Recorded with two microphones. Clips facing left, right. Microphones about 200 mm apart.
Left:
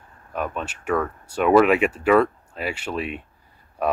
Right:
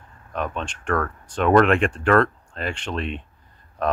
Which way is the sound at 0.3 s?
5° left (ahead or behind).